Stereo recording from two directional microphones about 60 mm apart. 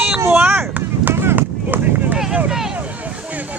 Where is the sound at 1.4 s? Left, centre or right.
Right.